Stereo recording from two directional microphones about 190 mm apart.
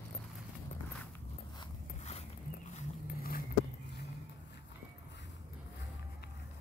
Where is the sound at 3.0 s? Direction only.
50° left (ahead or behind).